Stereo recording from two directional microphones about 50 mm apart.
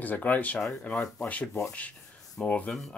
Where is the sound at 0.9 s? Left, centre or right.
Centre.